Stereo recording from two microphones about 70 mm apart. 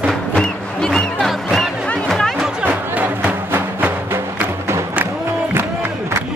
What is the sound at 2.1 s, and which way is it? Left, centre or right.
Music, centre.